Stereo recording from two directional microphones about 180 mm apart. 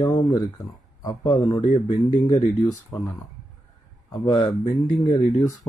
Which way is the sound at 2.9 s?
15° left (ahead or behind).